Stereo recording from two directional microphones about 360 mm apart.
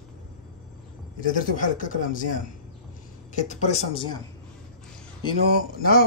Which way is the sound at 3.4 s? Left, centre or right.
Centre.